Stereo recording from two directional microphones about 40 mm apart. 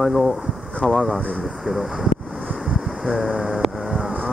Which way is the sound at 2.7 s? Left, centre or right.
Centre.